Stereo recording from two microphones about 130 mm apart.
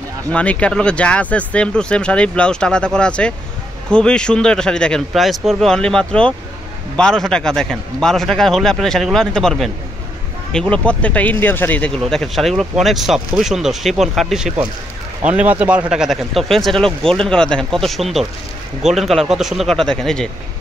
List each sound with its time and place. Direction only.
0.3 s speech: 10° left (ahead or behind)
12.0 s speech: centre (ahead or behind)